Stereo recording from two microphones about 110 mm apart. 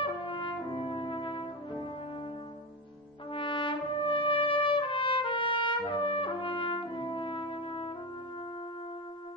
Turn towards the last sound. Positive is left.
turn(degrees=50)  # may be behind; listen again after turning